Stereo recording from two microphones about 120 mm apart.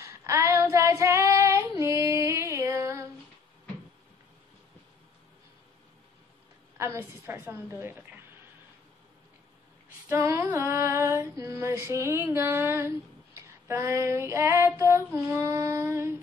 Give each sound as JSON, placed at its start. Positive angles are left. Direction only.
{"t": 0.0, "sound": "child singing", "side_deg": -25}
{"t": 6.8, "sound": "female singing", "side_deg": -20}
{"t": 10.0, "sound": "female singing", "side_deg": -25}